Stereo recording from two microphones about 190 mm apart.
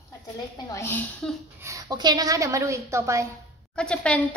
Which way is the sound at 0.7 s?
10° left (ahead or behind).